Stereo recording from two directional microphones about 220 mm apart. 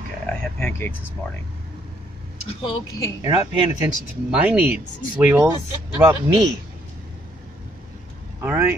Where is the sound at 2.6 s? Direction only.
25° left (ahead or behind).